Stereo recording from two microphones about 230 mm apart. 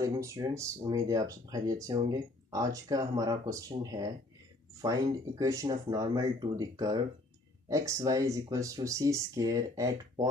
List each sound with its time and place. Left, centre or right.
0.0 s speech: centre